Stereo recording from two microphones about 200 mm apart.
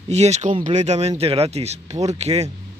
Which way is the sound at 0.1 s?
35° right (ahead or behind).